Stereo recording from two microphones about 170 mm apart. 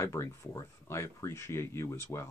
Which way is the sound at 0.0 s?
15° left (ahead or behind).